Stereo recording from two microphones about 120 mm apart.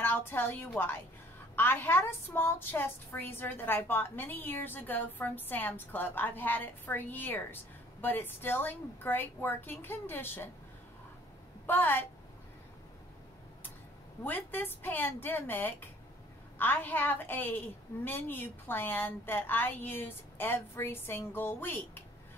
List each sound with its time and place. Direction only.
0.0 s a woman's voice: 20° left (ahead or behind)
11.6 s a woman's voice: 15° left (ahead or behind)
14.2 s a woman's voice: 15° left (ahead or behind)